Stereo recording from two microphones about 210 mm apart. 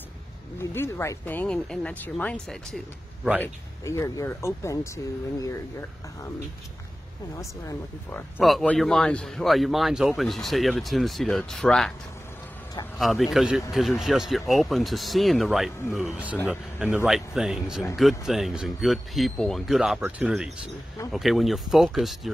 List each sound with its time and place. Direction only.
0.6 s speech: 10° left (ahead or behind)
3.8 s speech: 15° left (ahead or behind)
7.3 s speech: 15° left (ahead or behind)
8.4 s speech: centre (ahead or behind)
13.0 s speech: centre (ahead or behind)